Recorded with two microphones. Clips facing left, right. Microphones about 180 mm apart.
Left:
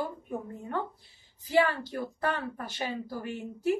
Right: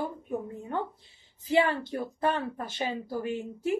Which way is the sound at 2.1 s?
25° right (ahead or behind).